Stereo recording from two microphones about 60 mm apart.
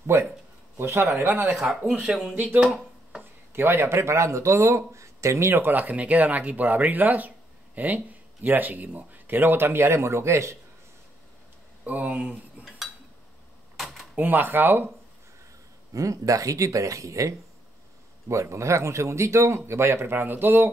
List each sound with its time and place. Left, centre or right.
0.0 s speech: right
1.8 s speech: right
2.0 s speech: centre
2.3 s speech: right
2.6 s a sound: centre
3.2 s speech: right
11.8 s speech: right
12.6 s cutlery: centre
13.7 s typewriter: centre
14.1 s speech: right
15.9 s speech: right
18.3 s speech: right